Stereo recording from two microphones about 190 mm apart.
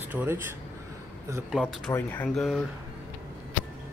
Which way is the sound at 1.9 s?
10° left (ahead or behind).